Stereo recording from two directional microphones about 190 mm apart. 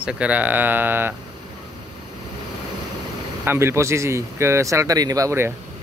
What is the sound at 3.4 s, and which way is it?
Speech, 10° right (ahead or behind).